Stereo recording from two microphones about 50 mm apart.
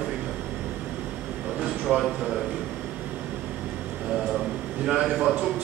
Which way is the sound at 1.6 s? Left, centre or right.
Centre.